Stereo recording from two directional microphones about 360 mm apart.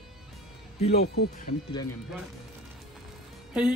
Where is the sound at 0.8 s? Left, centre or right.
Left.